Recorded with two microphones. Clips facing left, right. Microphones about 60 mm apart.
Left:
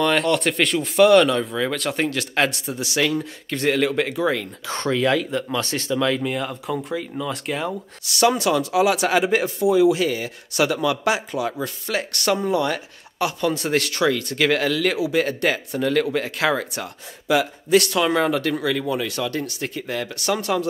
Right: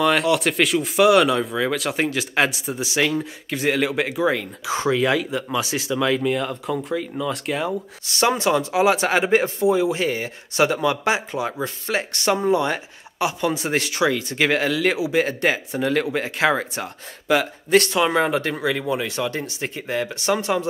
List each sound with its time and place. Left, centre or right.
0.0 s speech: centre
8.1 s speech: right
17.3 s speech: right
17.9 s speech: right